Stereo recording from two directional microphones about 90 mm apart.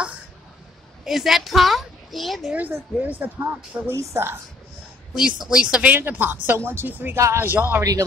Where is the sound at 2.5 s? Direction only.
20° right (ahead or behind).